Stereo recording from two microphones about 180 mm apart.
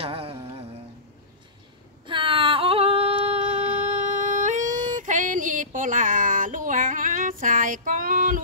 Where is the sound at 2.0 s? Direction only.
30° right (ahead or behind); by 8.3 s 50° right (ahead or behind).